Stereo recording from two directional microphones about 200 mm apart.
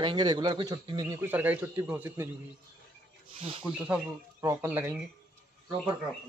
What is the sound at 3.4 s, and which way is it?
Speech, 30° right (ahead or behind).